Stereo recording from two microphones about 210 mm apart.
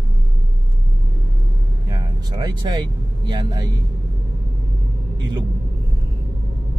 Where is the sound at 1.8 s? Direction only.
20° right (ahead or behind).